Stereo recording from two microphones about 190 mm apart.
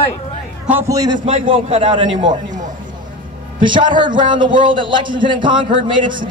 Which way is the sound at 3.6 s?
25° right (ahead or behind).